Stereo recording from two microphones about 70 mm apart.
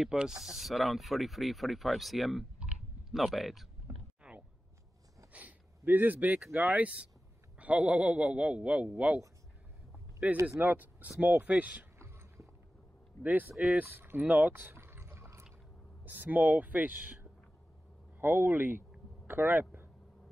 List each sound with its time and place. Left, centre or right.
0.0 s speech: centre
2.6 s clicking: centre
4.2 s a sound: centre
6.3 s a man's voice: centre
10.2 s a man's voice: right
12.0 s a sound: right
13.2 s a man's voice: right
14.5 s pour: right
16.0 s a man's voice: right
19.2 s a sound: right